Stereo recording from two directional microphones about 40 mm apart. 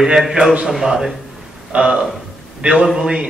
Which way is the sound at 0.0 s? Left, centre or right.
Centre.